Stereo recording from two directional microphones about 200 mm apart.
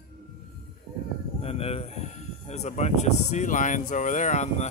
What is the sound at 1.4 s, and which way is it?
Speech, 30° left (ahead or behind).